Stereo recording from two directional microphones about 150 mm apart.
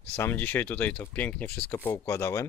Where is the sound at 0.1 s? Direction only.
15° left (ahead or behind).